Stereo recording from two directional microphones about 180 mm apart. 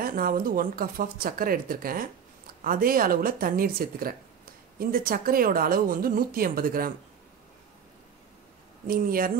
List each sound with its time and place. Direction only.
0.0 s a woman's voice: 50° right (ahead or behind)
8.8 s a woman's voice: 55° right (ahead or behind)